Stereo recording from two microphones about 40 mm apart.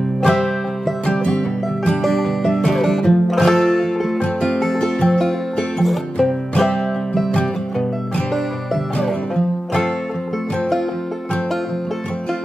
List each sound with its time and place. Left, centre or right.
0.2 s music: centre
1.0 s music: left
2.0 s music: centre